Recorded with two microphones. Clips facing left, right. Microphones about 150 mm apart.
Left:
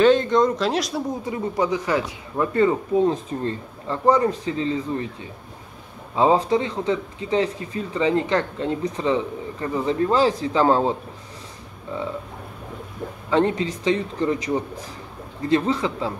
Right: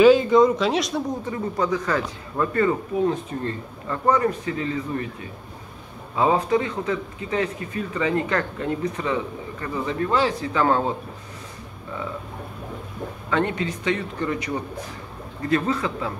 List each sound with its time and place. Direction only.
0.0 s speech: 5° right (ahead or behind)
1.2 s speech: 15° left (ahead or behind)
13.3 s speech: 30° left (ahead or behind)
15.4 s speech: 25° left (ahead or behind)